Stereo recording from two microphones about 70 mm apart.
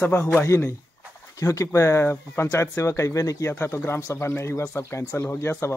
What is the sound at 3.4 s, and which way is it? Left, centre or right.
Speech, left.